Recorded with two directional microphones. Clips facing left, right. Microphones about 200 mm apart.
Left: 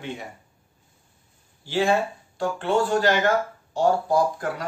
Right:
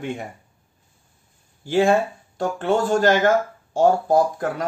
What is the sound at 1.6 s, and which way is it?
Speech, 50° right (ahead or behind).